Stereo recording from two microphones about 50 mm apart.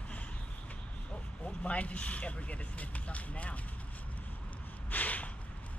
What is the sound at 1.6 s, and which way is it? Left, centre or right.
Speech, left.